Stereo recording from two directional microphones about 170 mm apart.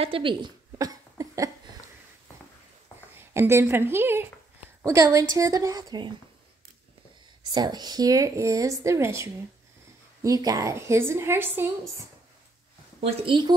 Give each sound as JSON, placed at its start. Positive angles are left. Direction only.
{"t": 0.0, "sound": "a sound", "side_deg": -30}
{"t": 3.2, "sound": "a woman's voice", "side_deg": -15}
{"t": 7.5, "sound": "a woman's voice", "side_deg": -25}
{"t": 13.0, "sound": "a woman's voice", "side_deg": -30}